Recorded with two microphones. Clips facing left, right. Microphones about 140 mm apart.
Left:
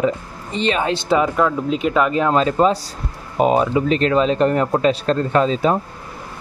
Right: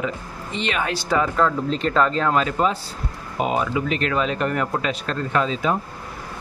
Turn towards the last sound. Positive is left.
turn(degrees=35)  # may be behind; listen again after turning